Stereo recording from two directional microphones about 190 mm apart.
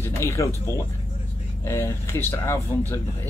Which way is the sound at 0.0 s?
15° left (ahead or behind).